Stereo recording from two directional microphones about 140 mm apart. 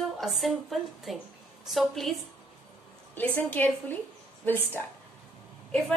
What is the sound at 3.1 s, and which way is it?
Speech, 15° left (ahead or behind).